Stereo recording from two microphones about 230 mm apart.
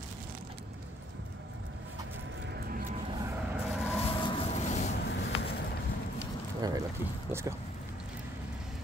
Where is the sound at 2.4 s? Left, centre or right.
Right.